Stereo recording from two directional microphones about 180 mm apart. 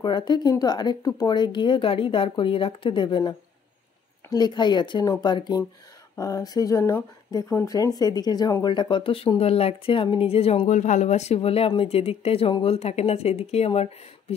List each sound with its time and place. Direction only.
0.0 s speech: 25° left (ahead or behind)